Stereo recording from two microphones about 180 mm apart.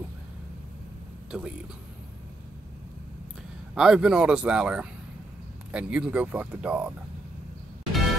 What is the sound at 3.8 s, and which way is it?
Speech, 5° right (ahead or behind).